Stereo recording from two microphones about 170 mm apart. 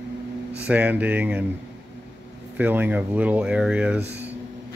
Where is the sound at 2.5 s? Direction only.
10° right (ahead or behind).